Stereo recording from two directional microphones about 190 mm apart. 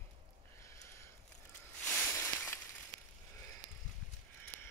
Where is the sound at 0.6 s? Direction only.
15° left (ahead or behind).